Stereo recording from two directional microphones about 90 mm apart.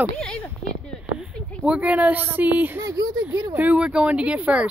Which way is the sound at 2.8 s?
40° right (ahead or behind).